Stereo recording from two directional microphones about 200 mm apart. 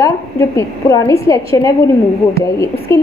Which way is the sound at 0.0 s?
15° left (ahead or behind).